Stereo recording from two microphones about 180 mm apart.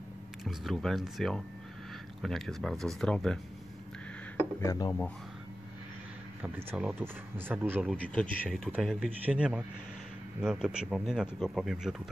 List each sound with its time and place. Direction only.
0.4 s speech: centre (ahead or behind)
4.4 s speech: 15° left (ahead or behind)
6.4 s speech: 5° right (ahead or behind)
8.1 s speech: 5° left (ahead or behind)